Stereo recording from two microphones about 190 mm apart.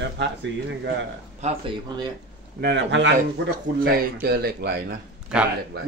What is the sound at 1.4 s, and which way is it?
Speech, 30° right (ahead or behind).